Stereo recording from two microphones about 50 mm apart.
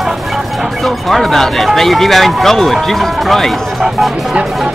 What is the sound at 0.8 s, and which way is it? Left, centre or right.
Speech, centre.